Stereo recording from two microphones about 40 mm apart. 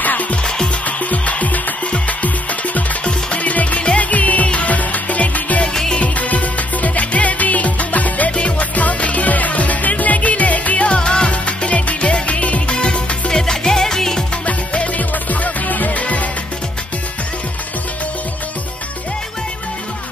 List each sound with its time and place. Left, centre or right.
0.0 s music: left
0.4 s music: centre
0.8 s music: left
8.3 s music: left
8.7 s music: left
13.4 s music: centre
14.4 s music: left
15.0 s music: left